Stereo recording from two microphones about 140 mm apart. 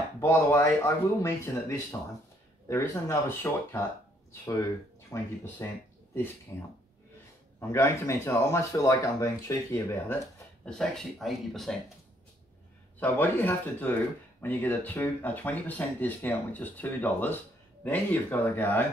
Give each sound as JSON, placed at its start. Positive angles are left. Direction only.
{"t": 0.2, "sound": "speech", "side_deg": 20}
{"t": 10.6, "sound": "speech", "side_deg": 5}
{"t": 13.0, "sound": "speech", "side_deg": 10}